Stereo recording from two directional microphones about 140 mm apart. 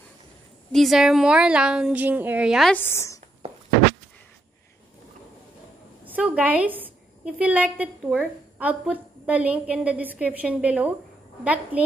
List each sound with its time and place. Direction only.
0.7 s a woman's voice: centre (ahead or behind)
2.7 s a woman's voice: 15° left (ahead or behind)
6.0 s a sound: 10° right (ahead or behind)
7.3 s a woman's voice: 10° right (ahead or behind)